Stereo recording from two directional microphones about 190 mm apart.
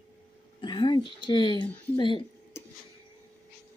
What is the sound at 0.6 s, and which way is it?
Speech, 25° left (ahead or behind).